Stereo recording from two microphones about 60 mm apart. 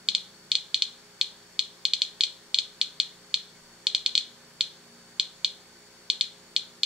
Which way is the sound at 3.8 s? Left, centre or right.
Centre.